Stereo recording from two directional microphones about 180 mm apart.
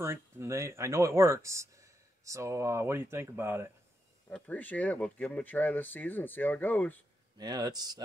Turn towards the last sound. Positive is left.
turn(degrees=-20)  # may be behind; listen again after turning